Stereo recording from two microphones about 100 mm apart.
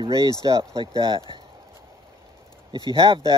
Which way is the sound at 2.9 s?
50° right (ahead or behind).